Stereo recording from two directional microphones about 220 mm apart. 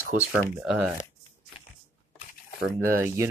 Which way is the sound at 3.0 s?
10° right (ahead or behind).